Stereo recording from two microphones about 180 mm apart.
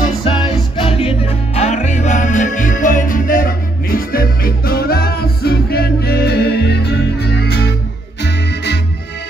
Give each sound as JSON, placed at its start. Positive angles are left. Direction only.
{"t": 0.2, "sound": "music", "side_deg": 30}